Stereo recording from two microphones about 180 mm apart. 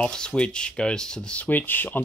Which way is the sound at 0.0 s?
5° left (ahead or behind).